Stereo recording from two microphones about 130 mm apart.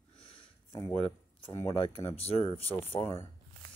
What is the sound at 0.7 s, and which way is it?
Speech, 35° left (ahead or behind).